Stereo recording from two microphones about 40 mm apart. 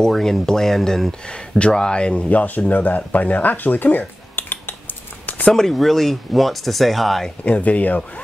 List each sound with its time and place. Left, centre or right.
0.1 s speech: centre
1.6 s speech: left
4.4 s a sound: left
5.7 s speech: centre
7.4 s speech: left